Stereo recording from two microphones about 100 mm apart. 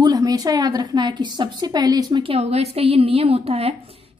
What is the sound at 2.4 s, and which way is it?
A woman's voice, 90° right.